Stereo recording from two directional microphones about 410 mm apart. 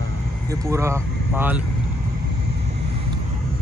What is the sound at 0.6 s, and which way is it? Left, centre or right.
Speech, centre.